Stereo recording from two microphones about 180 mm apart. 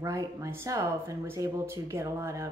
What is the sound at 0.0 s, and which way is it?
Speech, 15° right (ahead or behind).